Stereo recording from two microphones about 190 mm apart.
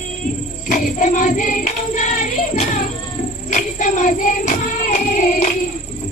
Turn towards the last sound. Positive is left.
turn(degrees=40)  # may be behind; listen again after turning